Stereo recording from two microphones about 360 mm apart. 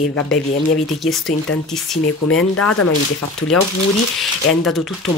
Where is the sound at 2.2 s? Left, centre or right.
Left.